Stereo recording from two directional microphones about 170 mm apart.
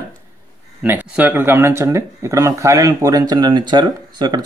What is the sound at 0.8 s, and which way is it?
Speech, 10° right (ahead or behind).